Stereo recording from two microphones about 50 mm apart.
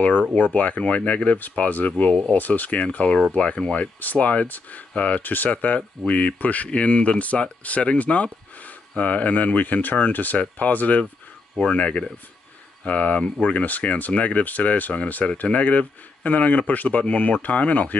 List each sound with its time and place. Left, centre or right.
0.5 s speech: left
4.9 s speech: left
5.2 s speech: left